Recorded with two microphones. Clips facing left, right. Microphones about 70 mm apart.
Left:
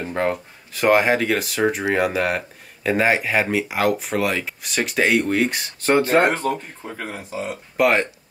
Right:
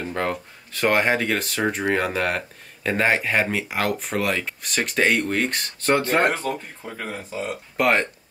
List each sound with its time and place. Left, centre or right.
0.1 s speech: centre
0.7 s speech: centre